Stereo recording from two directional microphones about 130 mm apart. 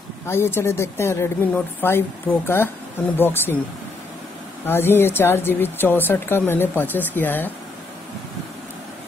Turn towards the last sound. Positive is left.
turn(degrees=15)  # may be behind; listen again after turning